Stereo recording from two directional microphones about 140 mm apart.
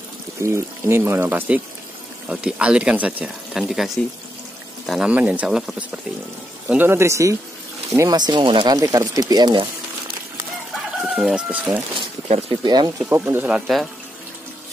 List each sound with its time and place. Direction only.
0.4 s speech: 20° right (ahead or behind)
6.7 s speech: 15° right (ahead or behind); by 8.7 s 35° right (ahead or behind)
8.7 s speech: 25° right (ahead or behind)
10.7 s chicken: centre (ahead or behind)
12.3 s speech: 45° right (ahead or behind)
12.6 s speech: 30° right (ahead or behind)
13.1 s speech: 15° right (ahead or behind)
13.6 s speech: centre (ahead or behind)